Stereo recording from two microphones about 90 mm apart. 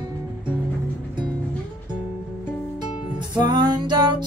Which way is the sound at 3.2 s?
55° right (ahead or behind).